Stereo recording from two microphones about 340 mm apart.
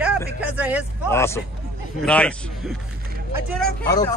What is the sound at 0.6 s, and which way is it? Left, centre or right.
Speech, centre.